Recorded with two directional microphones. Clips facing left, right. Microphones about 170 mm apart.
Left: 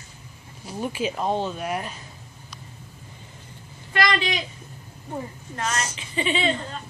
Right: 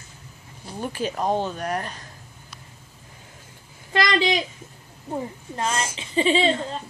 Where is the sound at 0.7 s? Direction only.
5° left (ahead or behind).